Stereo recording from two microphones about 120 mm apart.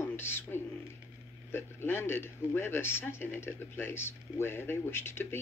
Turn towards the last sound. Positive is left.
turn(degrees=20)  # may be behind; listen again after turning